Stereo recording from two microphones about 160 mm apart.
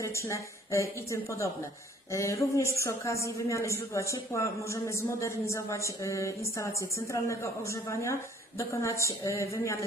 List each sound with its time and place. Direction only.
0.0 s a man's voice: 20° left (ahead or behind)